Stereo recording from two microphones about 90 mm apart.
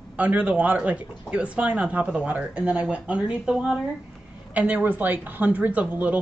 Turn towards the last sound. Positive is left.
turn(degrees=-15)  # may be behind; listen again after turning